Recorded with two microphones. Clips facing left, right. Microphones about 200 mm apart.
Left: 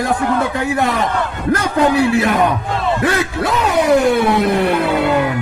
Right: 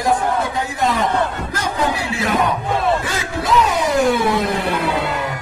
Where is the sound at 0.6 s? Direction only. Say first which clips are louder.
Left 2 dB; 65° left (ahead or behind).